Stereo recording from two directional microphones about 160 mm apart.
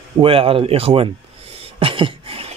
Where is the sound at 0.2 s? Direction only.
35° right (ahead or behind).